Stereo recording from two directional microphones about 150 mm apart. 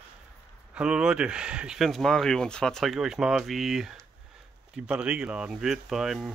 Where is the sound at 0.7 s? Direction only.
5° right (ahead or behind).